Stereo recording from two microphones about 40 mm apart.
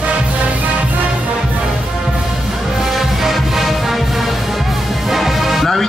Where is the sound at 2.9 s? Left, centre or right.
Centre.